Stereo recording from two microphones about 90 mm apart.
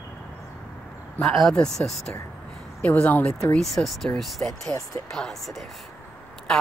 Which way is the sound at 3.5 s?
Centre (ahead or behind).